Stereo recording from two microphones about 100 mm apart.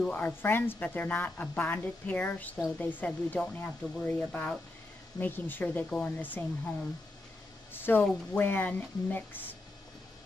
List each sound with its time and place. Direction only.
0.0 s speech: 15° left (ahead or behind)
7.7 s a sound: 20° left (ahead or behind)
8.4 s speech: 20° left (ahead or behind)